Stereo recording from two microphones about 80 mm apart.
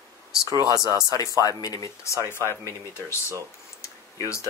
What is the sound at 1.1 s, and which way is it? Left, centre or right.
Speech, left.